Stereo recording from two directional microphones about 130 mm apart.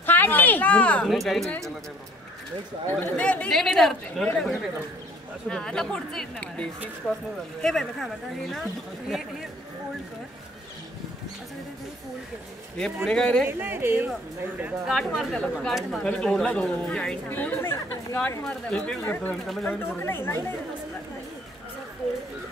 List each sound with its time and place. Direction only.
0.0 s speech: 15° left (ahead or behind)
2.9 s a woman's voice: 15° left (ahead or behind)
12.7 s speech: 5° left (ahead or behind)
13.5 s speech: 15° right (ahead or behind)
14.9 s a woman's voice: 5° left (ahead or behind)
19.4 s speech: centre (ahead or behind)
19.7 s a woman's voice: 15° left (ahead or behind)